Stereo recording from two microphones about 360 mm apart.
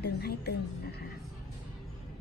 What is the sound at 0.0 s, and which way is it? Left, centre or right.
Frog, left.